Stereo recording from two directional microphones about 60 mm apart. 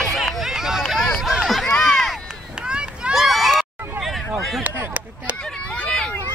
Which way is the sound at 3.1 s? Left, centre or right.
Centre.